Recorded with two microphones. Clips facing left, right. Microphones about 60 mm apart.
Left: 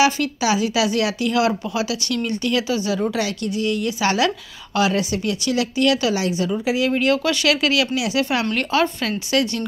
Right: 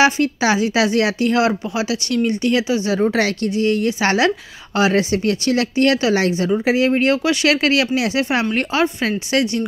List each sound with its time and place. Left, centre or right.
0.0 s speech: right